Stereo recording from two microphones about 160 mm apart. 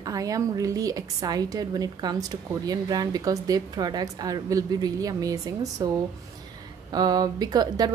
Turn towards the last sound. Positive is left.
turn(degrees=-25)  # may be behind; listen again after turning